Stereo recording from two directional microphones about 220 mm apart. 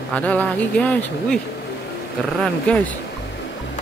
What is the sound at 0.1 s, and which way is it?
Speech, 5° left (ahead or behind).